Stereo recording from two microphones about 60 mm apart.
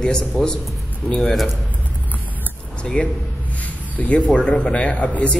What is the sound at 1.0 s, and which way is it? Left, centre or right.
Speech, left.